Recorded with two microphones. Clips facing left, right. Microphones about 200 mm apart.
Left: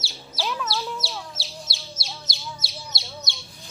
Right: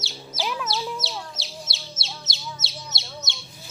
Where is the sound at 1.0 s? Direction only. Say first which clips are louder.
Right 1 dB; centre (ahead or behind).